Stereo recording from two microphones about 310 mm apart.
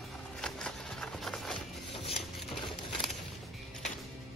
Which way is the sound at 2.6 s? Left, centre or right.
Centre.